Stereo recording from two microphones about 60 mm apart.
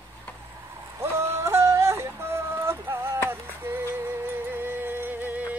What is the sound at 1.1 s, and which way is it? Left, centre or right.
Yodeling, right.